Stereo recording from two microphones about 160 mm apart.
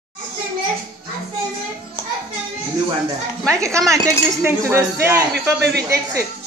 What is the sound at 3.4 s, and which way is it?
Speech, 20° right (ahead or behind).